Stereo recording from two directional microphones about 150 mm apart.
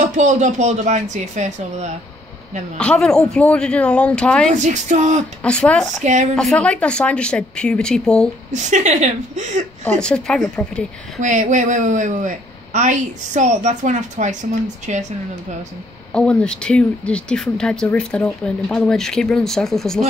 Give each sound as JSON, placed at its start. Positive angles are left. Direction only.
{"t": 0.0, "sound": "speech", "side_deg": -55}
{"t": 2.8, "sound": "speech", "side_deg": 5}
{"t": 4.5, "sound": "speech", "side_deg": -55}
{"t": 5.4, "sound": "speech", "side_deg": 5}
{"t": 8.5, "sound": "speech", "side_deg": -50}
{"t": 9.8, "sound": "speech", "side_deg": 5}
{"t": 11.1, "sound": "speech", "side_deg": -55}
{"t": 16.1, "sound": "speech", "side_deg": 5}